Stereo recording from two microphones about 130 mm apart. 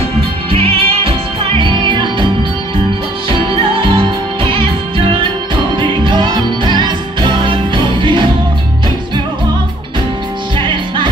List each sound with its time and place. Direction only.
0.5 s music: 45° right (ahead or behind)
3.3 s music: 40° right (ahead or behind)